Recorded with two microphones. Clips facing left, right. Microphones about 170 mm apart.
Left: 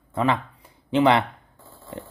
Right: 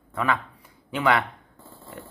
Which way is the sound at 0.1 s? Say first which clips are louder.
Left 3 dB; 25° left (ahead or behind).